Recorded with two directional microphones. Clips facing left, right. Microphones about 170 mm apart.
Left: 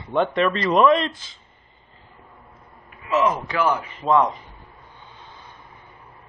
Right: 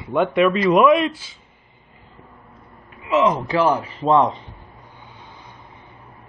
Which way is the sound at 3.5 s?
30° right (ahead or behind).